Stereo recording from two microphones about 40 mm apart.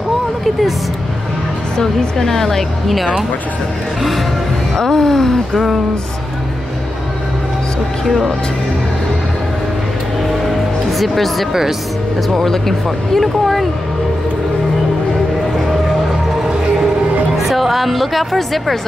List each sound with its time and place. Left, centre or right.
1.8 s a woman's voice: centre
4.7 s a woman's voice: centre
10.9 s speech: centre
17.5 s speech: centre